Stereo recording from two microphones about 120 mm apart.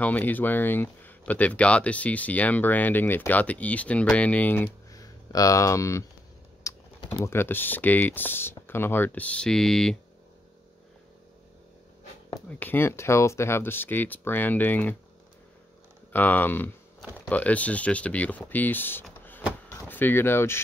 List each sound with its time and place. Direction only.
0.0 s speech: 15° left (ahead or behind)
4.9 s speech: 30° left (ahead or behind)
6.7 s typing: 25° left (ahead or behind)
7.1 s speech: 20° left (ahead or behind)
12.4 s speech: 15° left (ahead or behind)
16.1 s speech: 15° left (ahead or behind)